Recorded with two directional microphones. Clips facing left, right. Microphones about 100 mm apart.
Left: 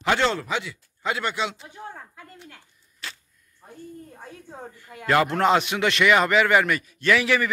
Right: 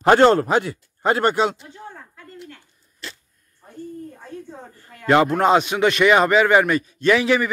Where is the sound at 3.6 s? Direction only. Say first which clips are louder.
Even; 15° left (ahead or behind).